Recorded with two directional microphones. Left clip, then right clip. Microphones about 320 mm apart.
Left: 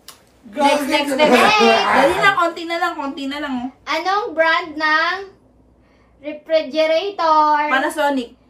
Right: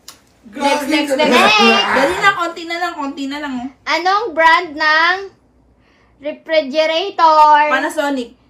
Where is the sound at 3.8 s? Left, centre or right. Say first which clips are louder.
Right 4 dB; right.